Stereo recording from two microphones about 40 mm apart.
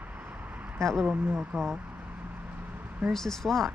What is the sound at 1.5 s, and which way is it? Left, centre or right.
Speech, right.